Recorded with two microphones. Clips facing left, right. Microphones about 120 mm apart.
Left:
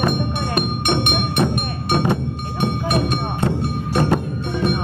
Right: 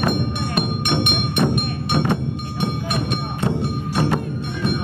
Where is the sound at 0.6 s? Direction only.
45° left (ahead or behind).